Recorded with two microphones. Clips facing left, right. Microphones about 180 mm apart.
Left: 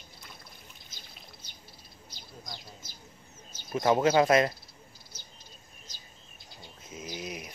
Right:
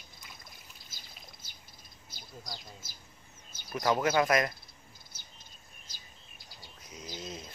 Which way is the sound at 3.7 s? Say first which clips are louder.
Left 4 dB; 25° left (ahead or behind).